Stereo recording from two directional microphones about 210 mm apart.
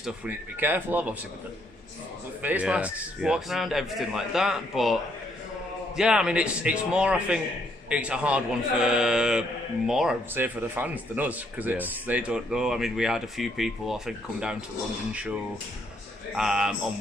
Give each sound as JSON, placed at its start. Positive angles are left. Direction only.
{"t": 0.0, "sound": "speech", "side_deg": -5}
{"t": 2.4, "sound": "speech", "side_deg": -5}
{"t": 5.9, "sound": "speech", "side_deg": -5}
{"t": 16.3, "sound": "speech", "side_deg": -5}